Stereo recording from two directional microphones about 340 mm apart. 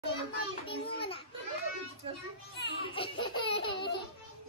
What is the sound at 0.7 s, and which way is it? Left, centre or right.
Speech, centre.